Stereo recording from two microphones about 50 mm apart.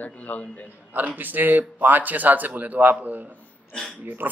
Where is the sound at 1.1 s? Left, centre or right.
Right.